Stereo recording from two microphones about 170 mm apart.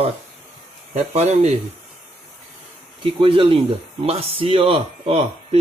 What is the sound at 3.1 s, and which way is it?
Speech, 30° right (ahead or behind).